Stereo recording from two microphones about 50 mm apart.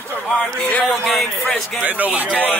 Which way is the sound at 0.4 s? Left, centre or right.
Left.